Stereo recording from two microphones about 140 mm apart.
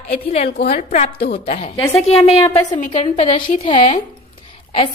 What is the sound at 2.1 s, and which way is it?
Speech, 45° left (ahead or behind).